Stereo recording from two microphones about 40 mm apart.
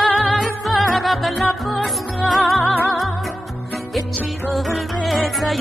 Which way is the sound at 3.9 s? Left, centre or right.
Centre.